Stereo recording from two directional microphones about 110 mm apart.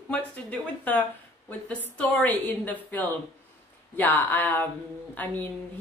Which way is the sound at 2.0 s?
15° left (ahead or behind).